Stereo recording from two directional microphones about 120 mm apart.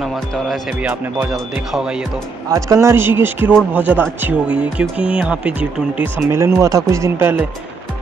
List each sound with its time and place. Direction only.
0.0 s speech: centre (ahead or behind)
0.8 s speech: 15° right (ahead or behind)
2.5 s speech: 25° right (ahead or behind)